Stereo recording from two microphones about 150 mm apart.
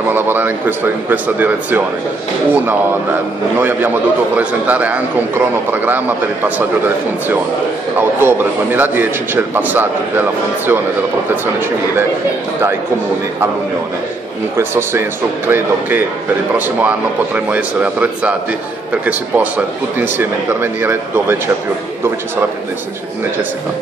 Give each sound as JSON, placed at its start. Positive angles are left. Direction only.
{"t": 0.1, "sound": "a man's voice", "side_deg": -15}
{"t": 8.2, "sound": "a man's voice", "side_deg": -15}
{"t": 14.6, "sound": "a man's voice", "side_deg": -15}